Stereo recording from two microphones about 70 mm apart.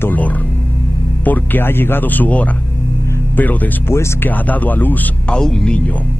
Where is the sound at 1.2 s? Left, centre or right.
Left.